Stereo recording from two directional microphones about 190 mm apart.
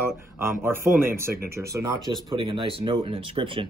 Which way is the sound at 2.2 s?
25° right (ahead or behind).